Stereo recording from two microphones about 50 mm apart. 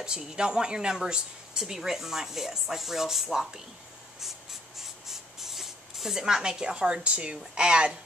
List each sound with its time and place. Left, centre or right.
0.0 s speech: centre
4.2 s rub: centre; by 7.3 s right
7.3 s speech: centre